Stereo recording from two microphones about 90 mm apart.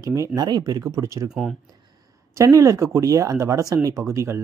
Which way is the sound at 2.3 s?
35° right (ahead or behind).